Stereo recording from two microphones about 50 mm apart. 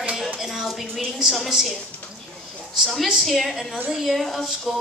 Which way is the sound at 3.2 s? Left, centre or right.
Centre.